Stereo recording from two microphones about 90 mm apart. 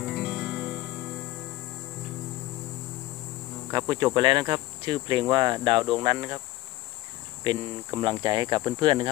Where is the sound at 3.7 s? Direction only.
55° right (ahead or behind).